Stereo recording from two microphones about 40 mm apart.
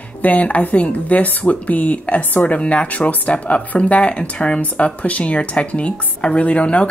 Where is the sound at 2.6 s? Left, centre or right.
Left.